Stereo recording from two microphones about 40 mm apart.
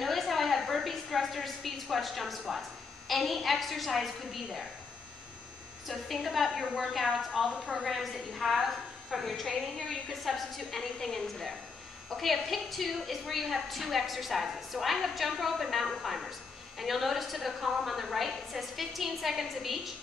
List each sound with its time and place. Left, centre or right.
0.0 s a sound: centre
3.1 s a woman's voice: centre
6.2 s a woman's voice: centre
6.5 s a woman's voice: right
7.8 s a woman's voice: centre
12.2 s a woman's voice: centre